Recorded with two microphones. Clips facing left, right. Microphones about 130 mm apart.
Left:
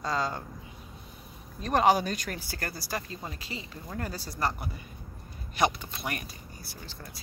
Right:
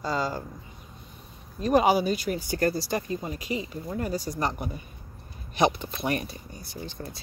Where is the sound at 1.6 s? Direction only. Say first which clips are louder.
Right 3 dB; 10° right (ahead or behind).